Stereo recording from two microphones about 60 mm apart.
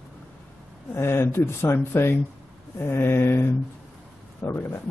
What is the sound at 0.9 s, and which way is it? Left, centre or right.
Speech, left.